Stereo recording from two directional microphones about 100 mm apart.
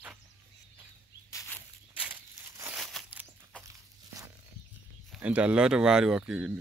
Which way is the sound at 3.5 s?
10° left (ahead or behind).